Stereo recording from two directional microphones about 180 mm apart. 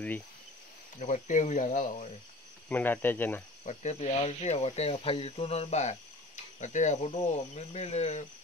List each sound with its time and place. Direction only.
0.9 s speech: 45° left (ahead or behind)
2.7 s speech: 10° left (ahead or behind)
3.6 s speech: 40° left (ahead or behind)